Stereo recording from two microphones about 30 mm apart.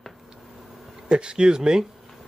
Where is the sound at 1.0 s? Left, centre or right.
Right.